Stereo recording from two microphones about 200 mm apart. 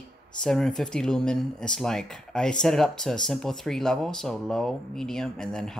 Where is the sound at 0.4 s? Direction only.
Centre (ahead or behind).